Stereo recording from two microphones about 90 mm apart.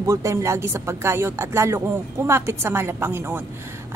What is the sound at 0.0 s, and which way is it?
A woman's voice, 35° right (ahead or behind).